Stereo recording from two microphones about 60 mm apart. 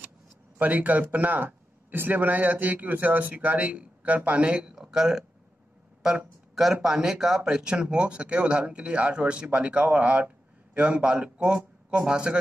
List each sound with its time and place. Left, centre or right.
0.6 s a man's voice: right